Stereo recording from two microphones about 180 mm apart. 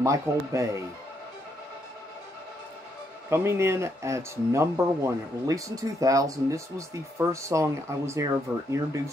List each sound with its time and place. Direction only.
0.0 s speech: 15° right (ahead or behind)
3.3 s speech: 15° right (ahead or behind)